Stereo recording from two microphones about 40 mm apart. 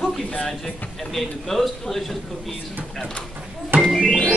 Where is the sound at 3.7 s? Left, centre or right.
Right.